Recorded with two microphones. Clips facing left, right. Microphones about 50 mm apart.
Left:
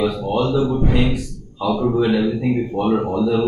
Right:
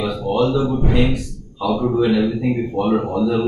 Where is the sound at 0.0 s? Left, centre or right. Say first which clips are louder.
Right 1 dB; centre.